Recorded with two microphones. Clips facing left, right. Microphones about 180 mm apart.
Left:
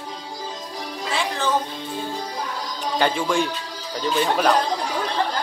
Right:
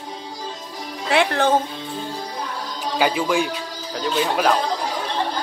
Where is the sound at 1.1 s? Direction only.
65° right (ahead or behind).